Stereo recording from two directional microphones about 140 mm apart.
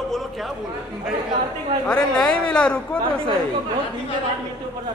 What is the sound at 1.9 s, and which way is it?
Speech, 10° left (ahead or behind).